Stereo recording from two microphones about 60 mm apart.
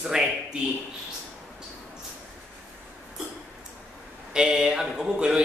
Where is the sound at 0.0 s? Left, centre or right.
Centre.